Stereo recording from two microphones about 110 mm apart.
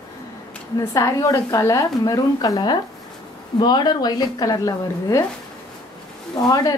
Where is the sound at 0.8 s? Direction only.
30° left (ahead or behind).